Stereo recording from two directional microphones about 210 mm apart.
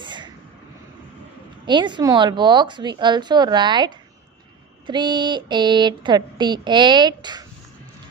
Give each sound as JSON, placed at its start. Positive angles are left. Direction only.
{"t": 0.0, "sound": "vehicle", "side_deg": -20}
{"t": 1.7, "sound": "speech", "side_deg": -20}